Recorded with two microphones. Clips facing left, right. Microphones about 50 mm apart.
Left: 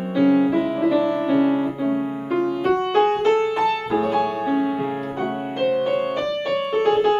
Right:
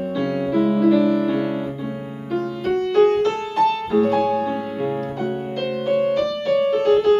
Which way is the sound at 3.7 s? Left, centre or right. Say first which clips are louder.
Right 2 dB; centre.